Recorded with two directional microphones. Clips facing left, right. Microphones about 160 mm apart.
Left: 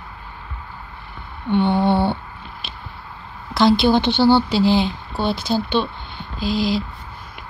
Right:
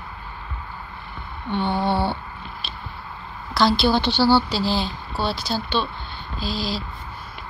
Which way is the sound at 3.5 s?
20° left (ahead or behind).